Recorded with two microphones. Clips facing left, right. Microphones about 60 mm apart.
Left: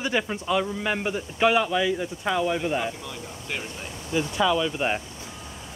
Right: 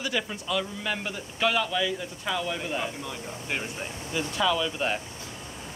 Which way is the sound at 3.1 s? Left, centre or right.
Centre.